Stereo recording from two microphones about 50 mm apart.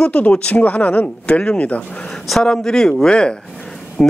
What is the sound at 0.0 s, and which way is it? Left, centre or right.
Speech, left.